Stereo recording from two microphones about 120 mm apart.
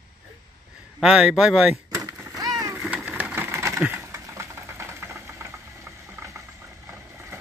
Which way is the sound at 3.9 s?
25° right (ahead or behind).